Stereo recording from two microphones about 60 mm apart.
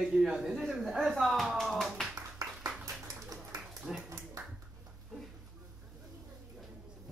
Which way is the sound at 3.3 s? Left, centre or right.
Right.